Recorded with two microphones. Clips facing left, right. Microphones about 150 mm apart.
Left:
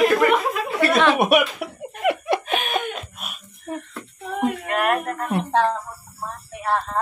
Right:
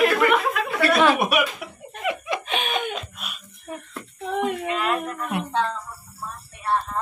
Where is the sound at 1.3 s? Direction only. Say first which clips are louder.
Left 5 dB; 65° left (ahead or behind).